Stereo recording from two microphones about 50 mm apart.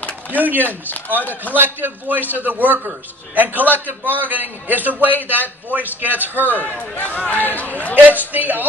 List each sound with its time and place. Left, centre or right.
0.3 s a man's voice: right
6.4 s a man's voice: left
8.3 s a man's voice: right